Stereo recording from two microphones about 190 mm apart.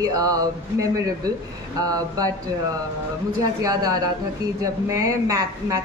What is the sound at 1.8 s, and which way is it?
Speech, 20° right (ahead or behind).